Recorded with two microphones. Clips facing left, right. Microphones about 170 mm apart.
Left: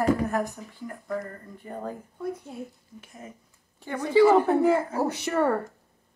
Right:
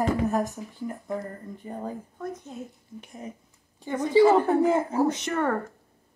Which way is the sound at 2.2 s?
10° left (ahead or behind).